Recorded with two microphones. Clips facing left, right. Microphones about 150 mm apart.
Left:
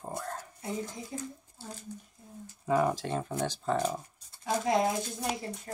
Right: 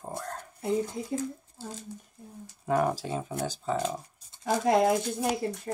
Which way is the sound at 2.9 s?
5° right (ahead or behind).